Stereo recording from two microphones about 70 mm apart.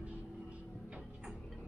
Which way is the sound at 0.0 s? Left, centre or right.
Centre.